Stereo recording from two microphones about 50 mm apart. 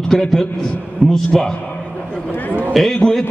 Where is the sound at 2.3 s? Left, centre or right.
Left.